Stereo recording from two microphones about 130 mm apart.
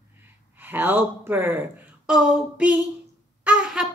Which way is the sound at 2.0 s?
5° right (ahead or behind).